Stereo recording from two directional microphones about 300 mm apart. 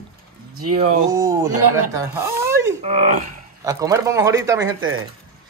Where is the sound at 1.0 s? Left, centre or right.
Centre.